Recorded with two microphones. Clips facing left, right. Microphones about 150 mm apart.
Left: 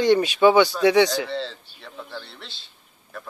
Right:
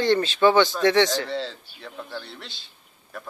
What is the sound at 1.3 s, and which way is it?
A child's voice, centre (ahead or behind).